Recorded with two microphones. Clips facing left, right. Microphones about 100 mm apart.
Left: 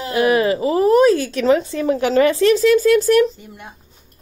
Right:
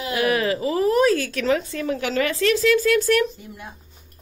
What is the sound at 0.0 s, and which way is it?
Speech, 30° left (ahead or behind).